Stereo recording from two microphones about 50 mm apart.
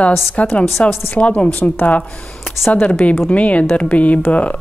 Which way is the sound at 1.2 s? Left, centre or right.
Left.